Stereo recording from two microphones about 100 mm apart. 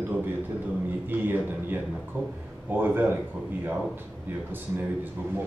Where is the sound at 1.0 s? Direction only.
20° right (ahead or behind).